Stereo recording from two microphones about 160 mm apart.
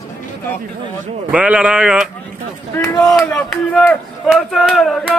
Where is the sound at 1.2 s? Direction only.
5° right (ahead or behind).